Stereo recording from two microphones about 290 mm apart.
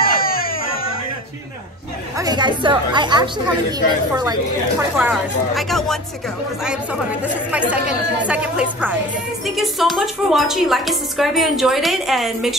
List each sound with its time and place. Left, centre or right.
0.0 s baby cry: left
2.1 s speech: centre
8.3 s a woman's voice: centre